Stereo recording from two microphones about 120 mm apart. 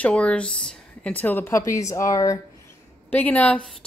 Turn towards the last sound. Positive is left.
turn(degrees=15)  # may be behind; listen again after turning